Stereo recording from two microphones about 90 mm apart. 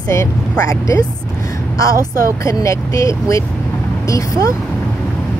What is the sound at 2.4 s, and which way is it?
Speech, 35° left (ahead or behind).